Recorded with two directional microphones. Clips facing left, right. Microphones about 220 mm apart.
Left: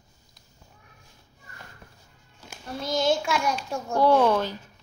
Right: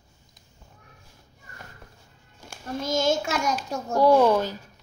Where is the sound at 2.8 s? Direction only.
45° right (ahead or behind).